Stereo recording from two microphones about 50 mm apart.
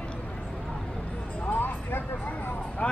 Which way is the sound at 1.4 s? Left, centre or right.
Left.